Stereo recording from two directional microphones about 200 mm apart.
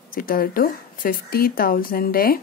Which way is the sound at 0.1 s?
45° left (ahead or behind).